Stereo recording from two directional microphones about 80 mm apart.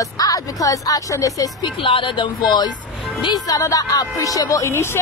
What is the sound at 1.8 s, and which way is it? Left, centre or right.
Speech, left.